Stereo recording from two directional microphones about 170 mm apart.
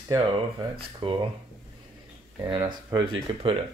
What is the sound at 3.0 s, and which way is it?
Speech, 30° right (ahead or behind).